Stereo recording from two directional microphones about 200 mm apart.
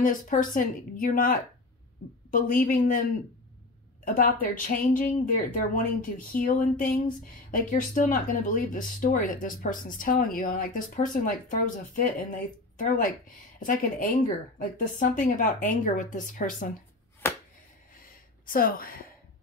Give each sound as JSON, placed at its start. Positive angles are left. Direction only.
{"t": 0.0, "sound": "speech", "side_deg": 40}
{"t": 18.4, "sound": "a woman's voice", "side_deg": 45}